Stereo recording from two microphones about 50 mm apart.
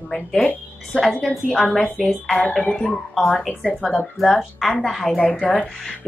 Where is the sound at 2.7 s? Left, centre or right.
Centre.